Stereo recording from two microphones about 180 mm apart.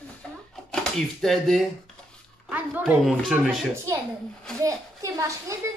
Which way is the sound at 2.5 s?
10° right (ahead or behind).